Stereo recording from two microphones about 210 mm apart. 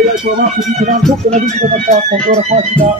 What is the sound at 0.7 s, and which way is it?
Speech, 35° right (ahead or behind).